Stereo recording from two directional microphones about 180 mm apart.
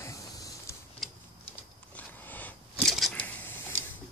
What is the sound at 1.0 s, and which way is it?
Tick-tock, centre (ahead or behind).